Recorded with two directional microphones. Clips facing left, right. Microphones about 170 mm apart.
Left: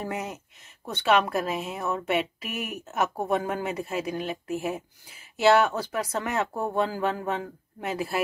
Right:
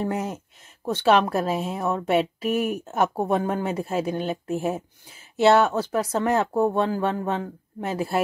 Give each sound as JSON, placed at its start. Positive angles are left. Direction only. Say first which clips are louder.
{"t": 0.0, "sound": "speech", "louder": "right 5 dB", "side_deg": -30}